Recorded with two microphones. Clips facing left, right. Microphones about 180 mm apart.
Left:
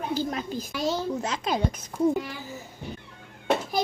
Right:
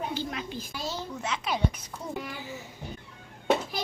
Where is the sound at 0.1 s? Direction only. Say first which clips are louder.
Left 5 dB; 40° left (ahead or behind).